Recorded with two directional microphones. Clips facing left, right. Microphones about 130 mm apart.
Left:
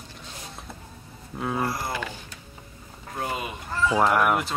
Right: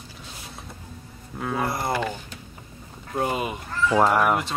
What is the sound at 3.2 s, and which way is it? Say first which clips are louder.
Speech: right 5 dB; 20° right (ahead or behind).